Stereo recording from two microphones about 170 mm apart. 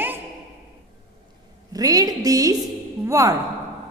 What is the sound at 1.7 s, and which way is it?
A woman's voice, 20° right (ahead or behind).